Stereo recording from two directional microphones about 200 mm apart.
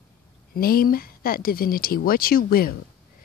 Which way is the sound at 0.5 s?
50° left (ahead or behind).